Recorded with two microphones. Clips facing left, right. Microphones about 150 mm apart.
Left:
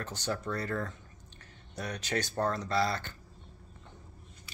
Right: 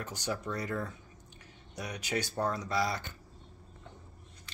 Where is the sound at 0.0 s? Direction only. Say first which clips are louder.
Left 1 dB; 10° right (ahead or behind).